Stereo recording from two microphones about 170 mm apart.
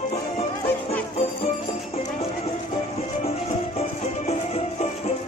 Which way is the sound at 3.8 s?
40° left (ahead or behind).